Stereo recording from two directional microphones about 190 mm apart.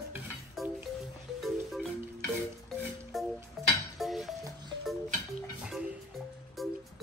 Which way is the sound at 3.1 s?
Centre (ahead or behind).